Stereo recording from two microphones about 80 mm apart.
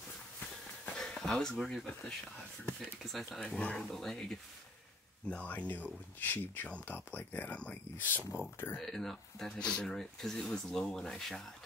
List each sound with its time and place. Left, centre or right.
0.9 s a sound: centre
1.5 s speech: centre
3.1 s speech: centre
5.3 s speech: centre
8.7 s speech: centre